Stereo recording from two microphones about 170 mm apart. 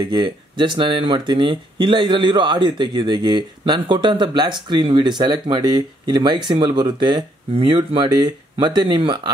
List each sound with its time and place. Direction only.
0.0 s speech: 25° right (ahead or behind)